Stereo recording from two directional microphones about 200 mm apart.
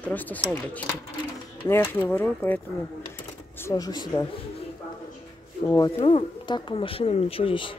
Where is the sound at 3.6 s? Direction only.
20° left (ahead or behind).